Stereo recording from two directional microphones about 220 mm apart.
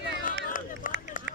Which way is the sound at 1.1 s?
35° left (ahead or behind).